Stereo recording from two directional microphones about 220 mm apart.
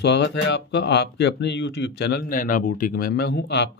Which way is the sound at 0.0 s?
50° left (ahead or behind).